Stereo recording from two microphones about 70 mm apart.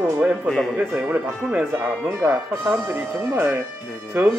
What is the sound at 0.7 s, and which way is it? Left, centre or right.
Speech, right.